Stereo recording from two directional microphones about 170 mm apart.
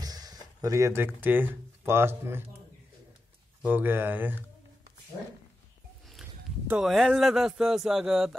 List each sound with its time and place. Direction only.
0.0 s speech: 20° right (ahead or behind)
3.6 s speech: 10° right (ahead or behind)
6.7 s speech: centre (ahead or behind)